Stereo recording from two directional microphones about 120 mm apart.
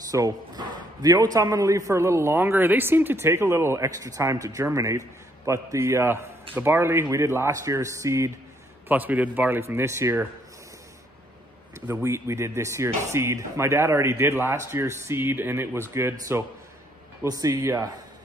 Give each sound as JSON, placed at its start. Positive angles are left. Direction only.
{"t": 0.1, "sound": "a man's voice", "side_deg": -30}
{"t": 8.8, "sound": "speech", "side_deg": -15}
{"t": 11.9, "sound": "a man's voice", "side_deg": -20}